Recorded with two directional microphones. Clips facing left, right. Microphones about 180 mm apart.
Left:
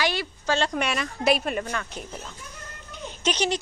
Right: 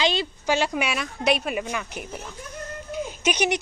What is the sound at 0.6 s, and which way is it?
A woman's voice, 5° right (ahead or behind).